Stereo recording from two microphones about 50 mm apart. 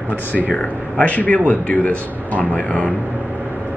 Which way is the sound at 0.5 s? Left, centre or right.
Left.